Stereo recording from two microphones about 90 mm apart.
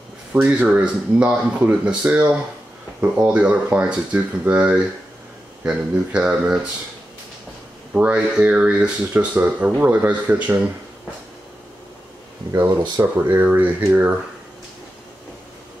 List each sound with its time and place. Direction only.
0.3 s speech: 15° right (ahead or behind)
7.9 s speech: 15° right (ahead or behind)
12.4 s speech: 40° right (ahead or behind)
13.0 s speech: 20° right (ahead or behind)